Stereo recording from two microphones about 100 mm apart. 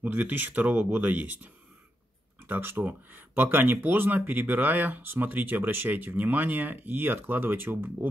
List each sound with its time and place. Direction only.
0.0 s speech: 15° right (ahead or behind)